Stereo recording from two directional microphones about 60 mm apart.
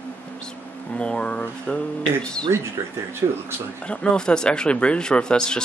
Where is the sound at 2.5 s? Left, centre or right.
Right.